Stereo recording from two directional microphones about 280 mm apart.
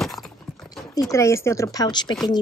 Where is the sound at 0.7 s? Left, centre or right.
Centre.